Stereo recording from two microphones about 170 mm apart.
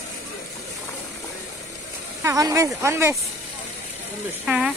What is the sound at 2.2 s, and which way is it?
Speech, 20° right (ahead or behind).